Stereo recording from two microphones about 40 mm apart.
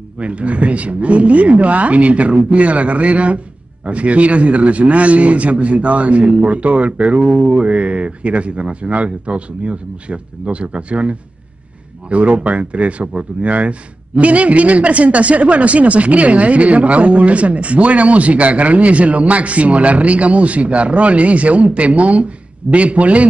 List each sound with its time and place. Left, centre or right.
0.2 s a man's voice: right